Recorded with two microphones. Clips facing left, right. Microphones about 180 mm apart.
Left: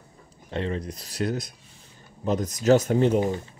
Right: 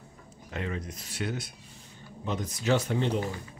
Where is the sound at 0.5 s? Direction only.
30° left (ahead or behind).